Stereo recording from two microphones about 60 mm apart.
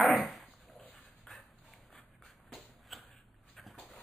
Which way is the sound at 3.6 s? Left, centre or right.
Centre.